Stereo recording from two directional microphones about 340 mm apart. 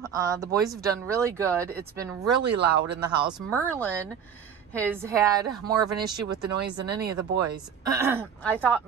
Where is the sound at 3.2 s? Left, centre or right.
Centre.